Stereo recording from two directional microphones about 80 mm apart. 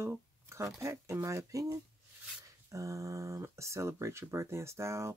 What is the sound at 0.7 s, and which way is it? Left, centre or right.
Speech, right.